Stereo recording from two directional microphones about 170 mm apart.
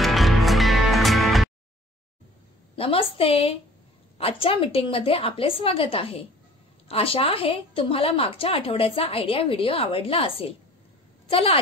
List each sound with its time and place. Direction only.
0.0 s music: centre (ahead or behind)
2.7 s a woman's voice: 35° left (ahead or behind)